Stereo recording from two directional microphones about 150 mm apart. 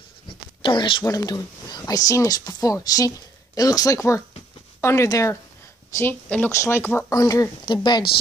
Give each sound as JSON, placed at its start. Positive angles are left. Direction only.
{"t": 0.6, "sound": "speech", "side_deg": 35}